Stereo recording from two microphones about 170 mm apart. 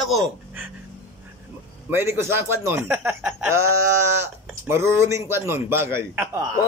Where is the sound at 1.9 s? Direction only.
15° right (ahead or behind).